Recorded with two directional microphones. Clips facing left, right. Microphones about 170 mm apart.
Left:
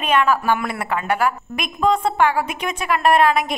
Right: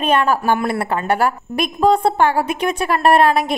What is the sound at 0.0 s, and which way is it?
A woman's voice, 35° right (ahead or behind).